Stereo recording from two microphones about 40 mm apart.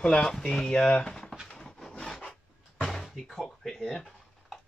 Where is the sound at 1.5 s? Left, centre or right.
Centre.